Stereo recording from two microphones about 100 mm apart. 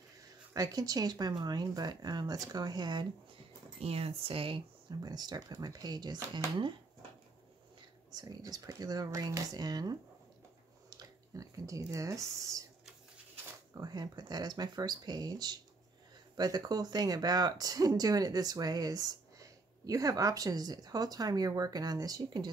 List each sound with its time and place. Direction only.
0.5 s speech: 40° right (ahead or behind)
3.8 s speech: 80° right; by 4.6 s 65° right (ahead or behind)
5.0 s speech: 45° right (ahead or behind)
8.1 s speech: 40° right (ahead or behind)
13.7 s speech: 45° right (ahead or behind)